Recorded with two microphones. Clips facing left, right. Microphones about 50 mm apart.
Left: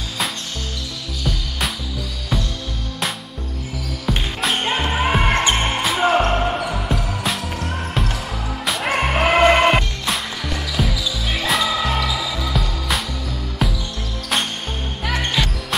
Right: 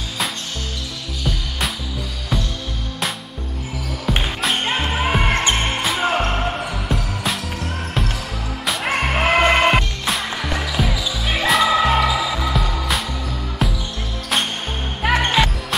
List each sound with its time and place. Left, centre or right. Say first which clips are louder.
4.4 s music: left 3 dB; centre
5.6 s basketball bounce: left 2 dB; centre
6.2 s music: left 2 dB; centre
8.6 s music: even; centre
10.9 s basketball bounce: right 1 dB; centre
12.5 s music: right 1 dB; centre
13.6 s basketball bounce: even; centre
15.0 s music: right 5 dB; right